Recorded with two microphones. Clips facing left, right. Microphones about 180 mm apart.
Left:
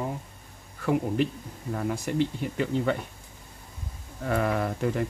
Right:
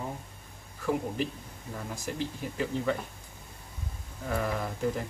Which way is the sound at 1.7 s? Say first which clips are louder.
Left 9 dB; 65° left (ahead or behind).